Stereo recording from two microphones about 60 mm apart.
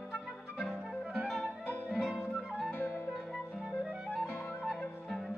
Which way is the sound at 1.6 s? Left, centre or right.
Left.